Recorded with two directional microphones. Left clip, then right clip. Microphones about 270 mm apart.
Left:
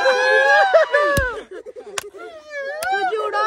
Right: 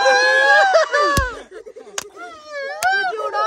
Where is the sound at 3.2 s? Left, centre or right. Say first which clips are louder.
Even; left.